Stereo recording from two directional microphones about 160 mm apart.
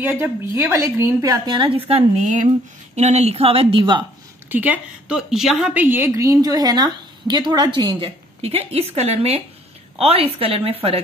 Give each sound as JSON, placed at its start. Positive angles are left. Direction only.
{"t": 0.0, "sound": "a woman's voice", "side_deg": -15}
{"t": 1.6, "sound": "a woman's voice", "side_deg": -35}
{"t": 4.5, "sound": "a woman's voice", "side_deg": -10}